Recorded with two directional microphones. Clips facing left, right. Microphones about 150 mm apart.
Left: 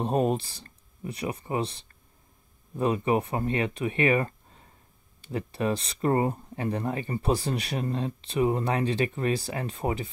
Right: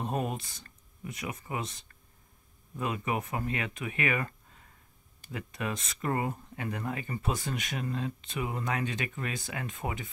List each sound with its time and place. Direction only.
0.0 s speech: 35° left (ahead or behind)